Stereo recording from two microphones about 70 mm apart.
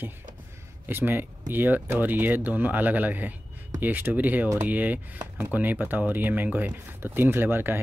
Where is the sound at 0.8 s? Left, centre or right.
Right.